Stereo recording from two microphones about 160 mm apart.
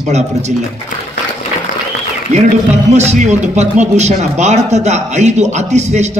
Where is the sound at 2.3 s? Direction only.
45° right (ahead or behind).